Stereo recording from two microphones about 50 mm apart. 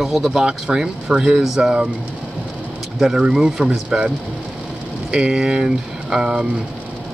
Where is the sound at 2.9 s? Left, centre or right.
Centre.